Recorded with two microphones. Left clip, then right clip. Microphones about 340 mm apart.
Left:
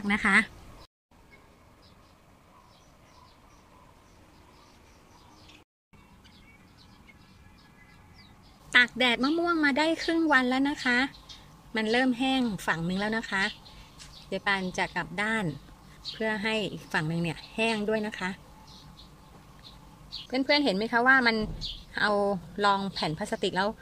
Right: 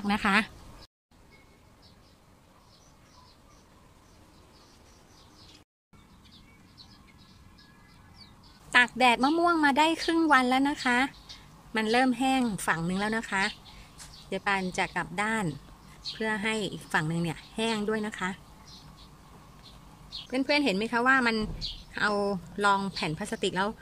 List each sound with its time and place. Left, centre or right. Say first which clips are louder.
0.0 s speech: left 2 dB; centre
8.7 s speech: right 1 dB; centre
20.2 s speech: left 1 dB; centre